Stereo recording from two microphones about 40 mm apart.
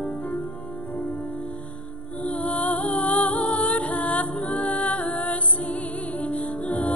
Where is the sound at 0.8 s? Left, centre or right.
Left.